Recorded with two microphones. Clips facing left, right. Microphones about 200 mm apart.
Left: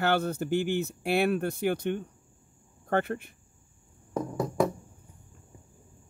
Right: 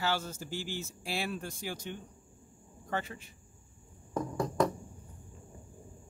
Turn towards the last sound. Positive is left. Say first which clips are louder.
# left 3 dB
turn(degrees=5)  # may be behind; listen again after turning